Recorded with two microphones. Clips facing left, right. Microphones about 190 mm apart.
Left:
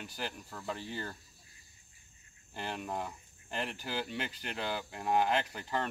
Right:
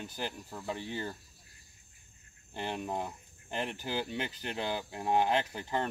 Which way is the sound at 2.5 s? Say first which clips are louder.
Right 3 dB; 20° right (ahead or behind).